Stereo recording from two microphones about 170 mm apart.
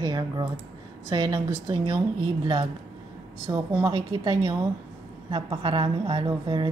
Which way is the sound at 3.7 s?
25° right (ahead or behind).